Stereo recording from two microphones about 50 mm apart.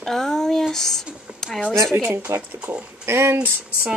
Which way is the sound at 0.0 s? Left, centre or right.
Centre.